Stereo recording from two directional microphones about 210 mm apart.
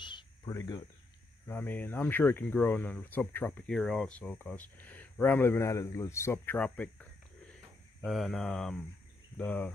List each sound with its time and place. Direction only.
0.0 s cricket: 20° left (ahead or behind)
1.5 s speech: 10° left (ahead or behind)